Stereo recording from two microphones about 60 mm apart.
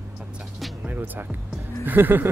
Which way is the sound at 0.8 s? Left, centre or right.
Right.